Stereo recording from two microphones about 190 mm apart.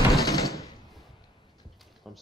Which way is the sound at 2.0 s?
Centre (ahead or behind).